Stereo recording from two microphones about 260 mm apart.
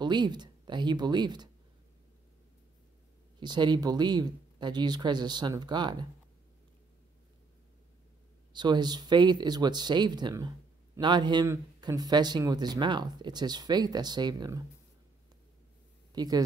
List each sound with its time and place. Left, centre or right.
0.0 s speech: centre
3.3 s speech: centre
8.5 s speech: centre
16.1 s speech: centre